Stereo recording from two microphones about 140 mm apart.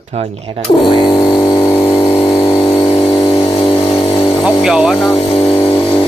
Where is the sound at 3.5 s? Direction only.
40° left (ahead or behind).